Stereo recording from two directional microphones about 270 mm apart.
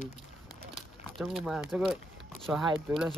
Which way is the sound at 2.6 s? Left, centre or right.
Centre.